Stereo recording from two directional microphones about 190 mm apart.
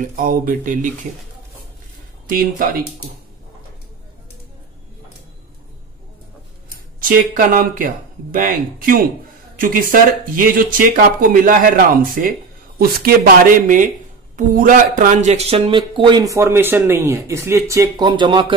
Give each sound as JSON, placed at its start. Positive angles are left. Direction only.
{"t": 0.0, "sound": "speech", "side_deg": -45}
{"t": 2.2, "sound": "speech", "side_deg": -50}
{"t": 7.0, "sound": "speech", "side_deg": -45}